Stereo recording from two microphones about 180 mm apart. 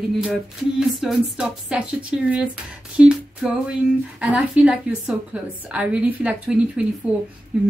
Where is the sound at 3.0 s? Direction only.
5° right (ahead or behind).